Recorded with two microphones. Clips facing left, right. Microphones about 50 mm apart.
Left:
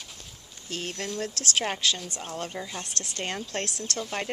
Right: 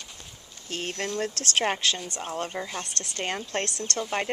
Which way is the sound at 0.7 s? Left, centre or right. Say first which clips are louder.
Right 2 dB; right.